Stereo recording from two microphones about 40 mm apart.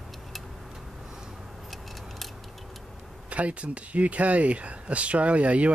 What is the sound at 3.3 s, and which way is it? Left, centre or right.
Speech, right.